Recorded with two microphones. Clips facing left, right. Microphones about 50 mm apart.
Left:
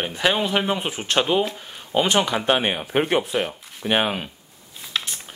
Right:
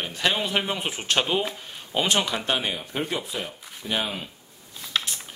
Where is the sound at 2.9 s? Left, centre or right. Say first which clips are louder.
Left 8 dB; left.